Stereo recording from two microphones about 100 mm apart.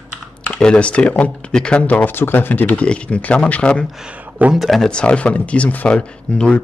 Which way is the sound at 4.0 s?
15° right (ahead or behind).